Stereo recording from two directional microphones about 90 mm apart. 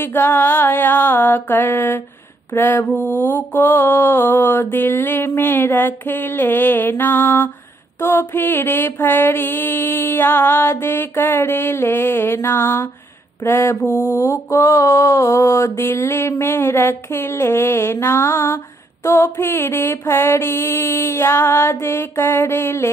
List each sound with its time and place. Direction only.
0.0 s mantra: 25° left (ahead or behind)